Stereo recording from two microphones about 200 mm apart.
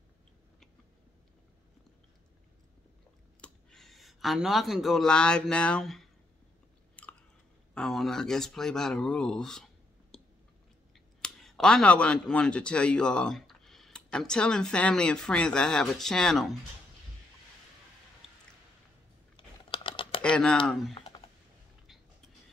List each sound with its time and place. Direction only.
3.3 s speech: 5° left (ahead or behind)
7.0 s chewing: 5° left (ahead or behind)
7.7 s speech: centre (ahead or behind)
10.1 s a sound: centre (ahead or behind)
11.1 s speech: centre (ahead or behind)
19.3 s typing: 25° left (ahead or behind)
20.2 s speech: 5° left (ahead or behind)
20.9 s computer keyboard: 25° left (ahead or behind)